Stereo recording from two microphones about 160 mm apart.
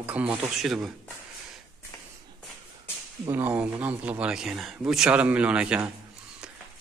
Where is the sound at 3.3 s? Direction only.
10° right (ahead or behind).